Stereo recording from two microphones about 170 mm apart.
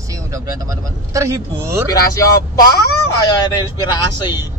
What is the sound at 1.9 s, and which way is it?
Speech, 20° left (ahead or behind).